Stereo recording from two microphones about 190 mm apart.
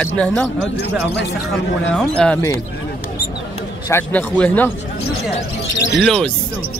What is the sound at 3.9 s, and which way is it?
Speech, 10° left (ahead or behind).